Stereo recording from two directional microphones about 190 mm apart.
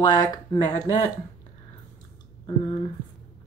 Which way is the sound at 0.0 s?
20° left (ahead or behind).